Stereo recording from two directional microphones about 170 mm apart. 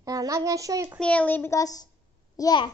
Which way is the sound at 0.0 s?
20° right (ahead or behind).